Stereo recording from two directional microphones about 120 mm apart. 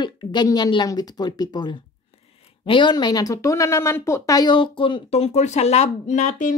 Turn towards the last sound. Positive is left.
turn(degrees=90)